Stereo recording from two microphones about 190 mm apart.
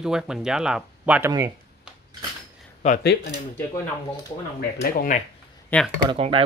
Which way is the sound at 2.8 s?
35° left (ahead or behind).